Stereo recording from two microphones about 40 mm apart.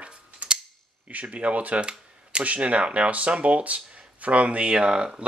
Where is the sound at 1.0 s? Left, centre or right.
Right.